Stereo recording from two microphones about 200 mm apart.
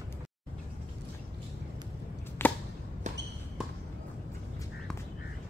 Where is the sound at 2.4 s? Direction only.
10° left (ahead or behind).